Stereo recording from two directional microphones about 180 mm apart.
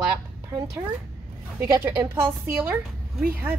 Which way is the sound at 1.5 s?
15° right (ahead or behind).